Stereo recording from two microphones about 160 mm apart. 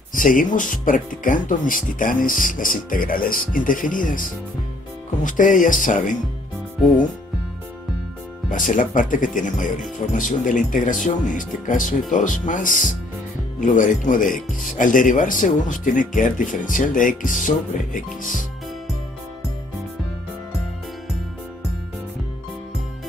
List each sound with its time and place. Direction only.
0.1 s speech: 55° left (ahead or behind)
8.5 s speech: 55° left (ahead or behind)